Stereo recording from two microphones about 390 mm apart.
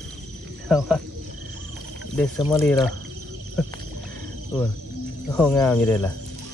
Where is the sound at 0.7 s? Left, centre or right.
Centre.